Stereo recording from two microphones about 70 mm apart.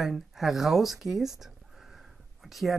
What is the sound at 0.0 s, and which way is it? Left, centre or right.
Speech, centre.